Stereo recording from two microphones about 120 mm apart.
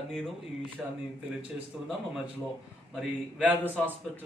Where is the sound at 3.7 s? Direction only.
15° right (ahead or behind).